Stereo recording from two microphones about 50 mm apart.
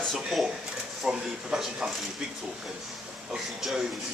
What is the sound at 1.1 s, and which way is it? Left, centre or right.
Speech, centre.